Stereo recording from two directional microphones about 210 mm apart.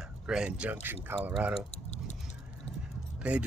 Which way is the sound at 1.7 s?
30° left (ahead or behind).